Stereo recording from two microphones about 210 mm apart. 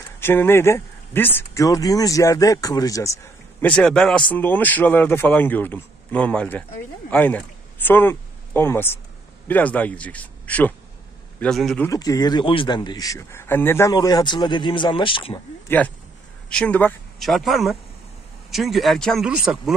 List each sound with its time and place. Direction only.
0.2 s speech: 10° left (ahead or behind)
3.6 s a man's voice: 5° left (ahead or behind)
11.9 s a man's voice: 15° left (ahead or behind)
15.7 s speech: 10° left (ahead or behind)